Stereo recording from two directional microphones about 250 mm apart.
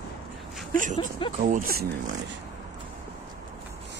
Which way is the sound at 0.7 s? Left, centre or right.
Right.